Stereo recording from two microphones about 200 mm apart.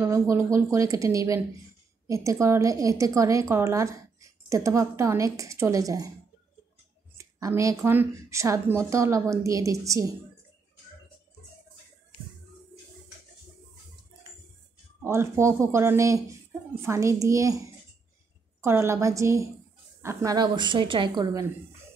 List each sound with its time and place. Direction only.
0.0 s a woman's voice: 15° right (ahead or behind)
7.2 s a woman's voice: 15° right (ahead or behind)
15.0 s a woman's voice: 15° right (ahead or behind)
18.6 s a woman's voice: 10° right (ahead or behind)